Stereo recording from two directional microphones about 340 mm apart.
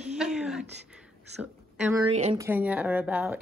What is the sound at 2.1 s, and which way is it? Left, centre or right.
Speech, centre.